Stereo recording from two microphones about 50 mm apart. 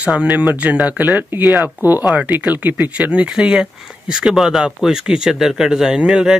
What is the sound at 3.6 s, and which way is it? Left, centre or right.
Speech, centre.